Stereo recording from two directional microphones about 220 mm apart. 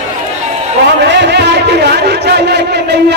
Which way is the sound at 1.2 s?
50° right (ahead or behind).